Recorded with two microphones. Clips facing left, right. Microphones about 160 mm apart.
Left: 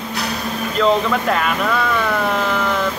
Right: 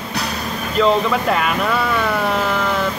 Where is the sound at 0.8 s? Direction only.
5° right (ahead or behind).